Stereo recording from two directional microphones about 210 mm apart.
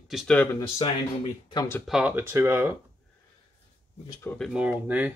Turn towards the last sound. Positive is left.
turn(degrees=-10)  # may be behind; listen again after turning